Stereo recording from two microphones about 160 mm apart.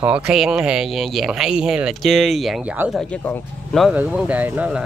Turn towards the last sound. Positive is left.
turn(degrees=-10)  # may be behind; listen again after turning